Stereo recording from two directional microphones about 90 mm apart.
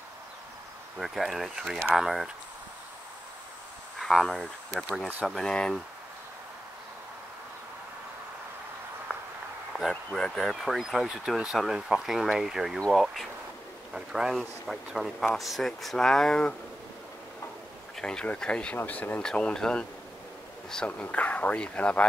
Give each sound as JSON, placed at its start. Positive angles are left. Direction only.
{"t": 0.9, "sound": "speech", "side_deg": 0}
{"t": 4.0, "sound": "speech", "side_deg": 5}
{"t": 9.7, "sound": "speech", "side_deg": 0}
{"t": 17.9, "sound": "speech", "side_deg": 10}